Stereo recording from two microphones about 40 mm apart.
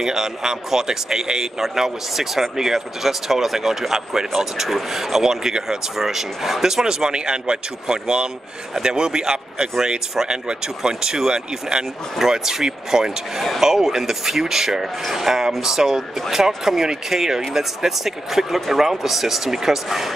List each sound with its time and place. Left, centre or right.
0.0 s speech: centre